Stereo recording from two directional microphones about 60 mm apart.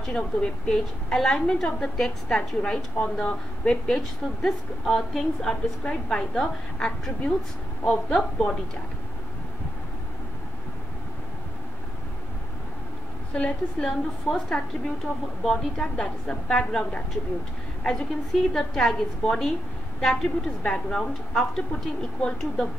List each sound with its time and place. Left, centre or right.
0.0 s a woman's voice: centre
13.3 s a woman's voice: centre
17.8 s a woman's voice: centre